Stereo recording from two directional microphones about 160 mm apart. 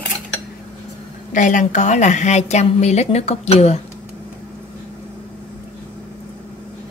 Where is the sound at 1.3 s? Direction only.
50° left (ahead or behind).